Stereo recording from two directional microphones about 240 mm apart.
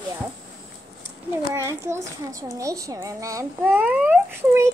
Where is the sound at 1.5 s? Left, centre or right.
Centre.